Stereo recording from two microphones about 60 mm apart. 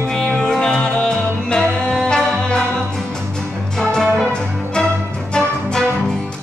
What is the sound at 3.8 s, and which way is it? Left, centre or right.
Music, centre.